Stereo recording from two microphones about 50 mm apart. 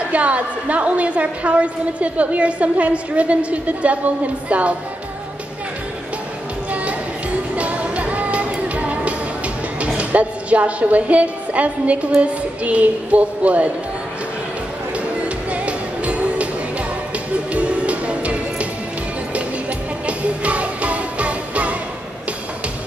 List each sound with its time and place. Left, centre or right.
0.1 s a woman's voice: right
6.7 s music: right
9.9 s a woman's voice: right
15.2 s music: right
17.5 s music: right
20.1 s music: right